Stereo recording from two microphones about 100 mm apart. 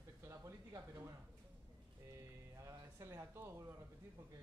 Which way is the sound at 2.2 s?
30° right (ahead or behind).